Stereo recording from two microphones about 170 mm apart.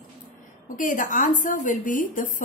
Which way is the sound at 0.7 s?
50° left (ahead or behind).